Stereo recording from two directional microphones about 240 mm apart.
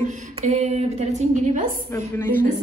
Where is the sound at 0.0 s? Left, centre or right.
Right.